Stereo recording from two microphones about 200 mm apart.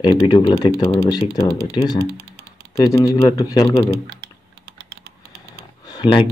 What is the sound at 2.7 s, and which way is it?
Speech, 15° left (ahead or behind).